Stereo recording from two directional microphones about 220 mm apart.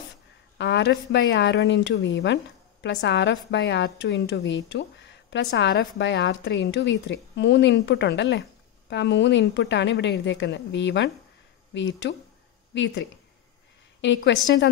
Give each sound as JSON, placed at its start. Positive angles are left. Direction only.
{"t": 0.6, "sound": "a woman's voice", "side_deg": 55}
{"t": 14.0, "sound": "a woman's voice", "side_deg": 55}